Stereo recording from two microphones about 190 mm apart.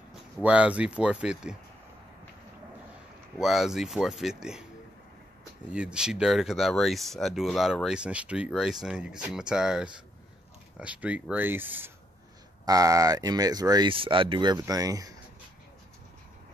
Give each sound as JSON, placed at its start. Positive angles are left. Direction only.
{"t": 0.1, "sound": "speech", "side_deg": -5}
{"t": 3.3, "sound": "speech", "side_deg": 0}
{"t": 5.7, "sound": "speech", "side_deg": -5}